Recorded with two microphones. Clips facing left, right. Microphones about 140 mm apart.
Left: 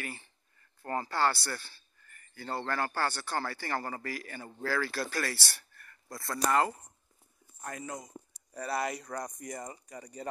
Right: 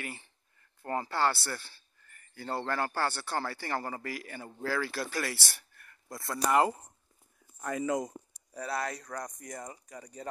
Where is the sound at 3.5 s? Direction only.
20° right (ahead or behind).